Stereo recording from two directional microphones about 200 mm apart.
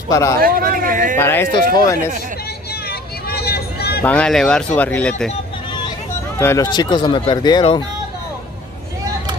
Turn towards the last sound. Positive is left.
turn(degrees=20)  # may be behind; listen again after turning